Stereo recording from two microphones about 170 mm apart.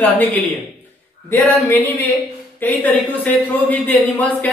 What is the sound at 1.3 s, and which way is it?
Speech, 10° left (ahead or behind).